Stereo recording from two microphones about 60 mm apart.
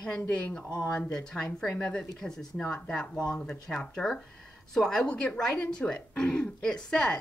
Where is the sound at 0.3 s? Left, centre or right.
Centre.